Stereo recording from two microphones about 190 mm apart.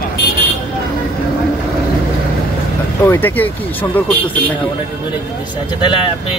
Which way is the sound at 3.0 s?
10° left (ahead or behind).